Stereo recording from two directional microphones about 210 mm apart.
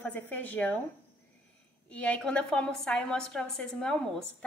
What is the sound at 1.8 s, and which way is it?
A woman's voice, 5° left (ahead or behind).